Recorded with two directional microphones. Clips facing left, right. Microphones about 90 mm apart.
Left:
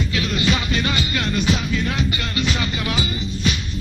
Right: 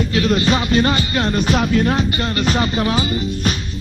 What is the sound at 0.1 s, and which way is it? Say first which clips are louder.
Music: right 6 dB; 40° right (ahead or behind).